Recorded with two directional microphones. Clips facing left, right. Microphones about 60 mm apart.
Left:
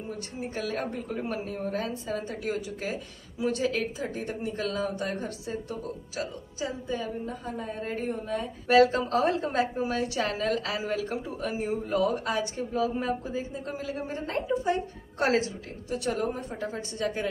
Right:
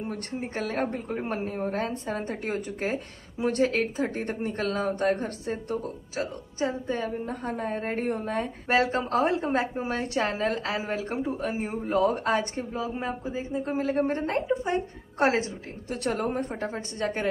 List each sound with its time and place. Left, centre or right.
0.4 s a woman's voice: right
8.6 s a woman's voice: right
14.2 s a woman's voice: right
15.9 s a woman's voice: right